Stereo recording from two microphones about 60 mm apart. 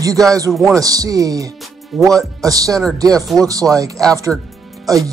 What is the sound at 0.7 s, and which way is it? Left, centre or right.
Speech, right.